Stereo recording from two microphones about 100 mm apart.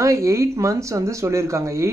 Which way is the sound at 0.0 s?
30° right (ahead or behind).